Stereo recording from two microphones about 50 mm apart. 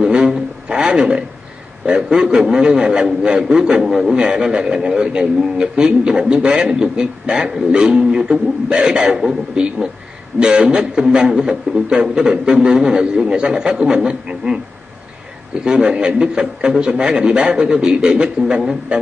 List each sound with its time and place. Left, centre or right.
0.0 s a sound: centre
1.9 s a man's voice: centre
3.8 s a man's voice: centre
4.1 s a man's voice: centre
15.6 s a man's voice: centre